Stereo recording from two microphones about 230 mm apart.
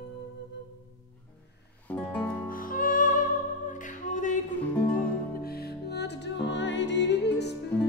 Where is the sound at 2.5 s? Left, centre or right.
Left.